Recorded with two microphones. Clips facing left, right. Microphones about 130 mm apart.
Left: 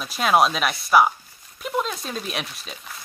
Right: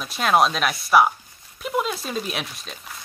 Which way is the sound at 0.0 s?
Centre (ahead or behind).